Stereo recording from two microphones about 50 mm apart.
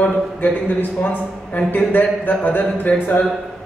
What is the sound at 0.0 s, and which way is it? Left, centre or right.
Speech, left.